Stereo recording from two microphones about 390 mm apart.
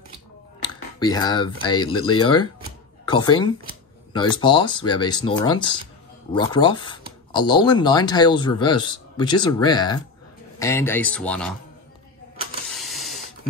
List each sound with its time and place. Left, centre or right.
0.9 s a man's voice: centre
12.6 s mechanisms: centre